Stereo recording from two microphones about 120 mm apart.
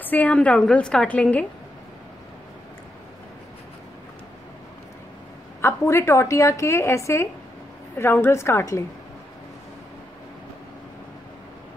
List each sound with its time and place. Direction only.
0.0 s a woman's voice: 15° left (ahead or behind)
5.6 s a woman's voice: 20° left (ahead or behind)